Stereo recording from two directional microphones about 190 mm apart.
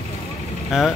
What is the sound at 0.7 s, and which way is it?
Speech, centre (ahead or behind).